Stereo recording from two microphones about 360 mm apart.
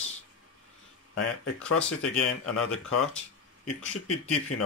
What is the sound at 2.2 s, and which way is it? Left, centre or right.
Speech, left.